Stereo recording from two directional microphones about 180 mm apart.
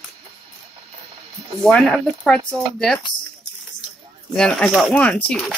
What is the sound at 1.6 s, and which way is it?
Speech, 5° left (ahead or behind).